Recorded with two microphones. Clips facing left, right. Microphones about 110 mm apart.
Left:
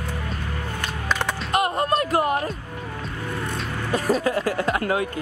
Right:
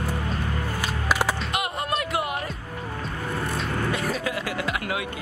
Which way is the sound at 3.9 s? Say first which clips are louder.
Left 6 dB; 40° left (ahead or behind).